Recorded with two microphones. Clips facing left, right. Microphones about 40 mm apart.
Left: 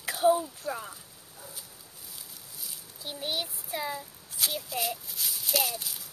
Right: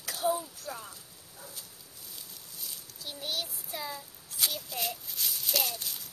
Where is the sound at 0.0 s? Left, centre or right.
Left.